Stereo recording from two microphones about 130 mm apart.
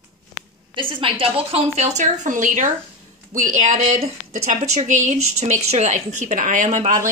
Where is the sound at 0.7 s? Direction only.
40° right (ahead or behind).